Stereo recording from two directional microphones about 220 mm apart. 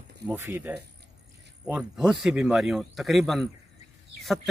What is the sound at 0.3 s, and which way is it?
Speech, 10° right (ahead or behind).